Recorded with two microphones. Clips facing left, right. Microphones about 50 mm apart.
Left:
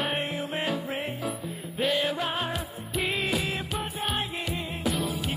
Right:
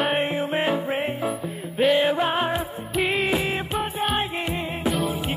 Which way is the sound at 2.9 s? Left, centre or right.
Centre.